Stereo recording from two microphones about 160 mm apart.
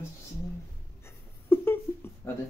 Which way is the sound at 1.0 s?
15° left (ahead or behind).